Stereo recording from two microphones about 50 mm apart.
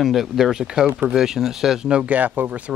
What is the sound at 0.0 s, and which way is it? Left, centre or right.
Speech, centre.